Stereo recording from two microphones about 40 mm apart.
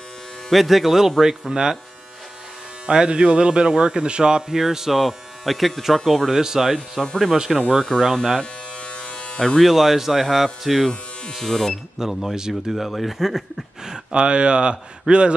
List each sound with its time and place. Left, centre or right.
0.5 s speech: centre
2.9 s a man's voice: right
5.4 s speech: centre
6.3 s speech: centre
7.7 s speech: centre
8.4 s electric shaver: left
9.6 s speech: centre
11.3 s speech: centre
12.0 s speech: centre
12.7 s speech: centre
14.1 s a man's voice: right